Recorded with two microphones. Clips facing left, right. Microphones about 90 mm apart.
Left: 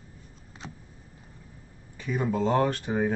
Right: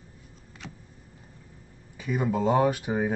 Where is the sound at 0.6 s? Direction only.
30° left (ahead or behind).